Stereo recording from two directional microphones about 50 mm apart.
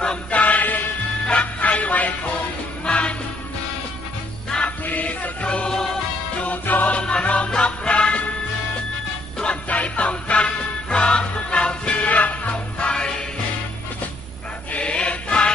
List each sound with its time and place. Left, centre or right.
0.0 s music: left
4.6 s music: left
7.0 s music: left
9.4 s music: left
14.7 s music: left